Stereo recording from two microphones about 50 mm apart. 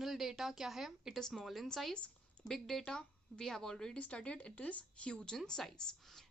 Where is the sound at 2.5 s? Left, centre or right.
Centre.